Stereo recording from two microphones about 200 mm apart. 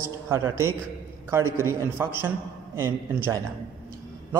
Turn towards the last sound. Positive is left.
turn(degrees=-10)  # may be behind; listen again after turning